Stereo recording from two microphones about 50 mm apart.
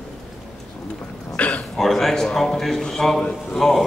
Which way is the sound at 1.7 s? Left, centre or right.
Centre.